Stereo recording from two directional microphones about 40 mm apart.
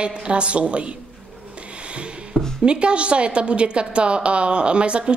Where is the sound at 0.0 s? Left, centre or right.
Right.